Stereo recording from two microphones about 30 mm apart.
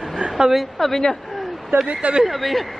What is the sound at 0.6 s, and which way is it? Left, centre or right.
Speech, centre.